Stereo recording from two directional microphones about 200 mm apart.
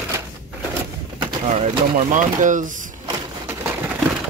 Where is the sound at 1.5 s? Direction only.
35° right (ahead or behind).